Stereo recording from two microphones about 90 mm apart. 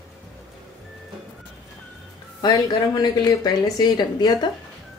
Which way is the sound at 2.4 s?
50° left (ahead or behind).